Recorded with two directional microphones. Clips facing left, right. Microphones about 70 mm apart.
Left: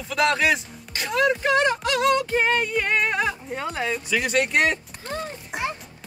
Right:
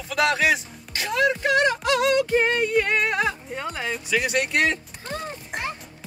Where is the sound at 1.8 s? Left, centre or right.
Centre.